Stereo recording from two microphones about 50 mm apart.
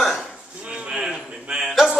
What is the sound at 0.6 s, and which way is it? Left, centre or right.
A man's voice, right.